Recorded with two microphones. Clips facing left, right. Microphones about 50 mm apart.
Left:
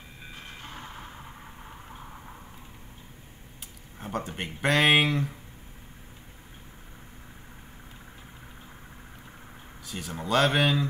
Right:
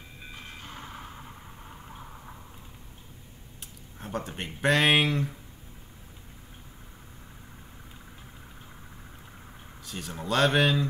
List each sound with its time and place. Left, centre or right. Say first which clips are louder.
0.4 s reversing beeps: left 1 dB; centre
0.7 s vehicle: left 2 dB; centre
4.0 s a sound: left 1 dB; centre
4.4 s speech: even; centre
9.8 s speech: left 1 dB; centre